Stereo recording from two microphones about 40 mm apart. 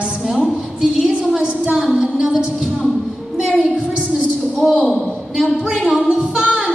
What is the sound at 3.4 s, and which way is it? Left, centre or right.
Speech, right.